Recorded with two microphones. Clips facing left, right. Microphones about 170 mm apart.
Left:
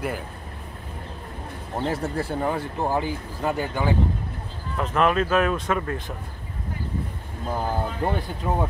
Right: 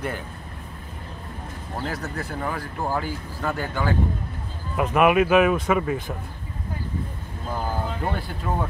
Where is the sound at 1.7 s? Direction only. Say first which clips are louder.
Left 4 dB; 30° left (ahead or behind).